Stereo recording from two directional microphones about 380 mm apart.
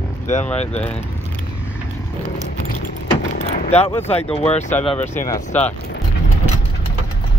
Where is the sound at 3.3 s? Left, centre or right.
Centre.